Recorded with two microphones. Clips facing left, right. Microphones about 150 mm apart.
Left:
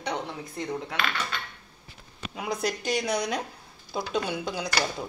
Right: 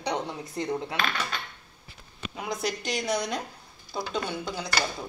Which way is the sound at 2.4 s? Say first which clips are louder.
Left 2 dB; 5° left (ahead or behind).